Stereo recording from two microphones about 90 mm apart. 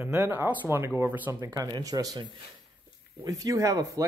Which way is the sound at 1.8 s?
40° right (ahead or behind).